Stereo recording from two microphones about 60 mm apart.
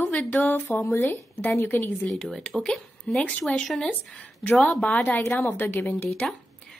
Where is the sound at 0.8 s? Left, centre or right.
Left.